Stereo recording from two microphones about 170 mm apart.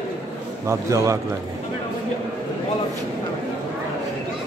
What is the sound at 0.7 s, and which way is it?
Speech, 20° right (ahead or behind).